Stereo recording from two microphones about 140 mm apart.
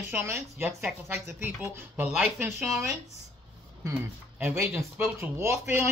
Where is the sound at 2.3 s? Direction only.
20° right (ahead or behind).